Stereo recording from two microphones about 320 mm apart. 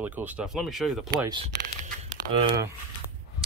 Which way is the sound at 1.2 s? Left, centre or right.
Centre.